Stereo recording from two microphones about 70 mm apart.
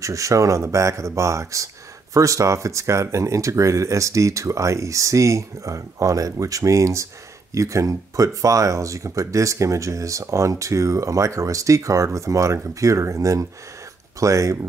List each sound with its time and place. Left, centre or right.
0.0 s speech: right